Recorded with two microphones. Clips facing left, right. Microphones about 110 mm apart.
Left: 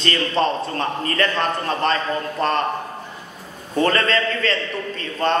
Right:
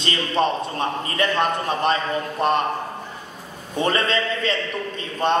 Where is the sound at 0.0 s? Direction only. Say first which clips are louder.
Left 1 dB; 15° right (ahead or behind).